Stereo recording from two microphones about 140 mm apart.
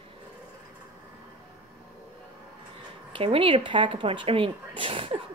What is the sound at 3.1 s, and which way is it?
A woman's voice, 40° right (ahead or behind).